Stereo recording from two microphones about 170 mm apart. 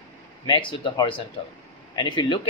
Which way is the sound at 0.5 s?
30° left (ahead or behind).